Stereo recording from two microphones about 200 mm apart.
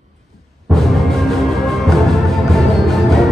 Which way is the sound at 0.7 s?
Centre (ahead or behind).